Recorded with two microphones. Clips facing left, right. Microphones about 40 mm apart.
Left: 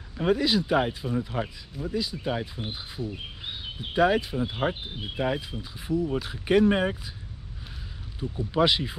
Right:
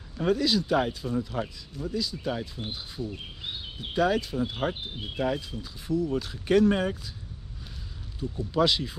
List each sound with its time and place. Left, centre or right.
0.2 s speech: left
8.2 s speech: left